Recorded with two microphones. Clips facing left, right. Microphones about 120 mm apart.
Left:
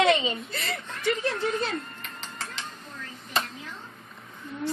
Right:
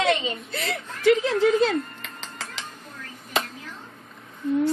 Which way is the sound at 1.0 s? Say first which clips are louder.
Right 8 dB; 90° right.